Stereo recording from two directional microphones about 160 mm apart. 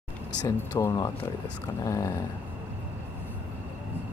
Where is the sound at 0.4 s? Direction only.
20° left (ahead or behind).